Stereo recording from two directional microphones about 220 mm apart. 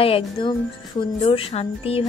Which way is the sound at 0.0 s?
25° left (ahead or behind).